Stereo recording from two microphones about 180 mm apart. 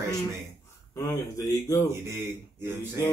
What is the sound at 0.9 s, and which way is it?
Speech, 15° left (ahead or behind).